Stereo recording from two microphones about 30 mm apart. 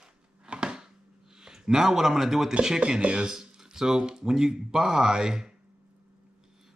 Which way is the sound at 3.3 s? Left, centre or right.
Centre.